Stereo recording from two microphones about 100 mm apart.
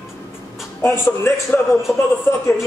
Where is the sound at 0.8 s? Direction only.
30° left (ahead or behind).